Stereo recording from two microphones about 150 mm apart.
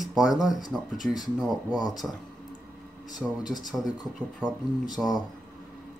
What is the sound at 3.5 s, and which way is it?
Speech, centre (ahead or behind).